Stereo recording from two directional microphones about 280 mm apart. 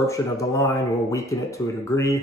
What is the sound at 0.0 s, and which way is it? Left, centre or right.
Speech, centre.